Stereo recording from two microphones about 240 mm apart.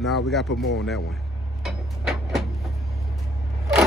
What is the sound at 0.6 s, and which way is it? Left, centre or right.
Speech, left.